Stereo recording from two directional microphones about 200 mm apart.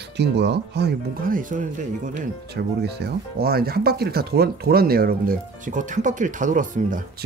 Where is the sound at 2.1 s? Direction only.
55° right (ahead or behind).